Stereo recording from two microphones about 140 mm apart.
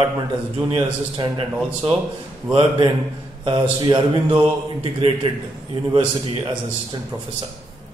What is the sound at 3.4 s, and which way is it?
A man's voice, 35° right (ahead or behind).